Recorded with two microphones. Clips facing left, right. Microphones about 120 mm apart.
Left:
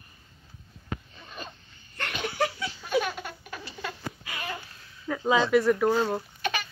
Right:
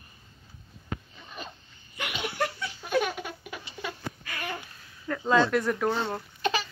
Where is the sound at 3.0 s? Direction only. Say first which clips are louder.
Right 2 dB; 15° right (ahead or behind).